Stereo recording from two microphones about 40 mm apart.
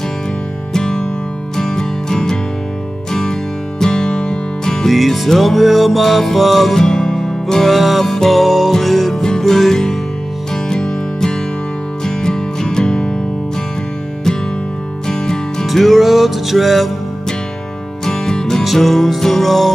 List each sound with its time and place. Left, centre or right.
0.7 s music: centre
4.8 s music: centre
7.7 s music: centre
9.1 s music: centre
10.5 s music: centre
15.0 s music: centre
15.6 s music: centre
18.0 s music: centre
18.6 s music: centre